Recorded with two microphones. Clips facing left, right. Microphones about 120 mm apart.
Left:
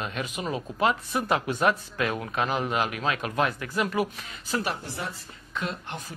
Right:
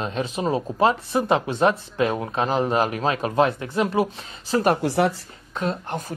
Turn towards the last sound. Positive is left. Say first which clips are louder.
# right 7 dB
turn(degrees=-40)  # may be behind; listen again after turning